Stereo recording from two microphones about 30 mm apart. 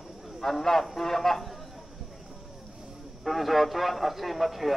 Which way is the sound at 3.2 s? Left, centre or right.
Centre.